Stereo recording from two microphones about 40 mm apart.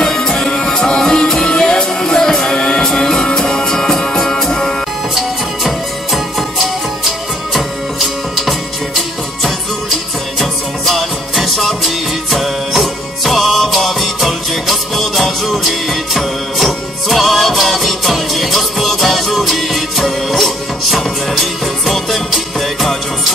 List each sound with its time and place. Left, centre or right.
0.0 s music: centre
5.1 s music: centre